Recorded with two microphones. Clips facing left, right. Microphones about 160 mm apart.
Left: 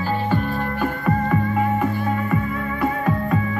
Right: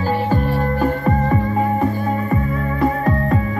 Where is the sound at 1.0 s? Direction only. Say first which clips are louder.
Right 2 dB; 35° right (ahead or behind).